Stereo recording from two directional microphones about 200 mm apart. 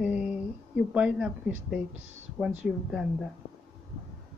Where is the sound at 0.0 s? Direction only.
5° right (ahead or behind).